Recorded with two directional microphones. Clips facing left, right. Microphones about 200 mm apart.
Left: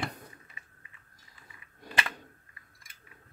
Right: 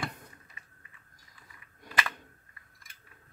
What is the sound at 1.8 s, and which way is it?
Cap gun, 30° left (ahead or behind).